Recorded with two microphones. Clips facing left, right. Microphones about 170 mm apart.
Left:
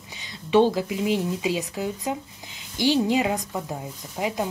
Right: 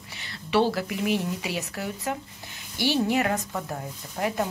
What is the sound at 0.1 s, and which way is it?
Speech, 15° left (ahead or behind).